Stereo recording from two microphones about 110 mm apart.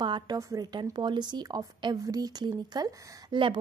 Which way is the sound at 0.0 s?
45° right (ahead or behind).